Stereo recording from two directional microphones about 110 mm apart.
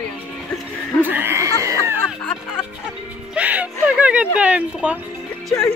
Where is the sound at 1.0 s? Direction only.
20° right (ahead or behind).